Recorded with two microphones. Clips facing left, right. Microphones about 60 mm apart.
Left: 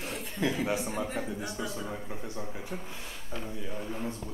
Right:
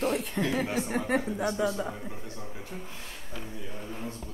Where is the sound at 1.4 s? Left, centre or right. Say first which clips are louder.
Right 8 dB; right.